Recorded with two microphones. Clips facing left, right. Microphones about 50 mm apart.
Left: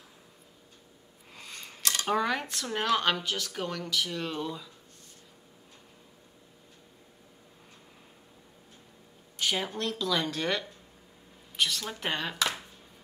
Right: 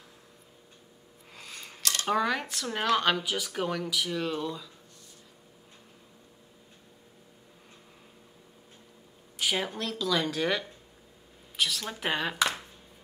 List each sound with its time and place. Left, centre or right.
1.3 s scissors: centre
1.8 s a sound: left
2.0 s speech: centre
9.4 s speech: centre